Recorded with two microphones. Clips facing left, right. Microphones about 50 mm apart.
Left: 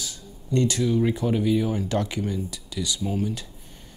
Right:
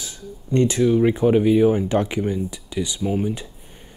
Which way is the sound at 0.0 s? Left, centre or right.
Right.